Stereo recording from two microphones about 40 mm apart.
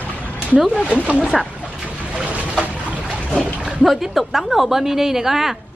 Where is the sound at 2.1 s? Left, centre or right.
Right.